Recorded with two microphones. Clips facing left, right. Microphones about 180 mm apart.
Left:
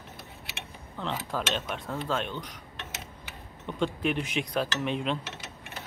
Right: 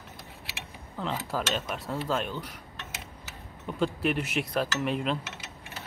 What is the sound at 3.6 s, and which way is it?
Speech, 5° right (ahead or behind).